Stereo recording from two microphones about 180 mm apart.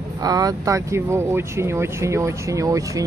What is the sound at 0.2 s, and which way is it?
Speech, 20° right (ahead or behind).